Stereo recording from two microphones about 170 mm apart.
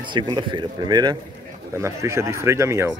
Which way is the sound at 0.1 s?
30° right (ahead or behind).